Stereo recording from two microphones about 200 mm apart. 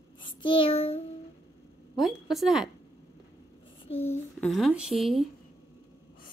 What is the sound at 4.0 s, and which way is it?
Speech, 10° left (ahead or behind).